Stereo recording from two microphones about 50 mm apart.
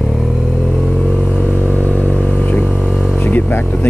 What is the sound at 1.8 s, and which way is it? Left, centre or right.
Vehicle, left.